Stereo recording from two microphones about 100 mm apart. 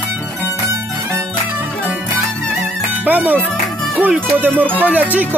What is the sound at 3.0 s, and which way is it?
Speech, 20° right (ahead or behind).